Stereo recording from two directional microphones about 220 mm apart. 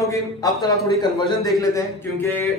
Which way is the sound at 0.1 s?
15° left (ahead or behind).